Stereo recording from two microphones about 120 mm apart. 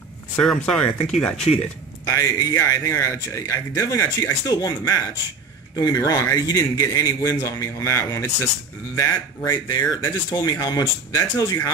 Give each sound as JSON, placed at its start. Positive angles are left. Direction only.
{"t": 0.4, "sound": "speech", "side_deg": 5}
{"t": 2.0, "sound": "a man's voice", "side_deg": 25}